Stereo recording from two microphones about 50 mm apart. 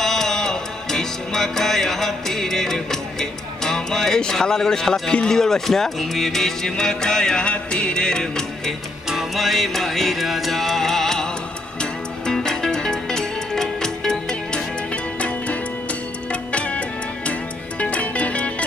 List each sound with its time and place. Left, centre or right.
0.0 s music: centre
5.1 s speech: centre
9.1 s music: centre
15.1 s music: left